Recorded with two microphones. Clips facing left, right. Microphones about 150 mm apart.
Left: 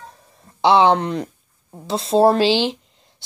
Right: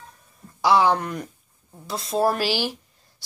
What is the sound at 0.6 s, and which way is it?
Speech, 25° left (ahead or behind).